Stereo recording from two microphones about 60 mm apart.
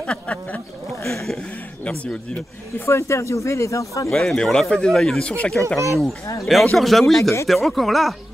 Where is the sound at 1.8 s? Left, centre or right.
Left.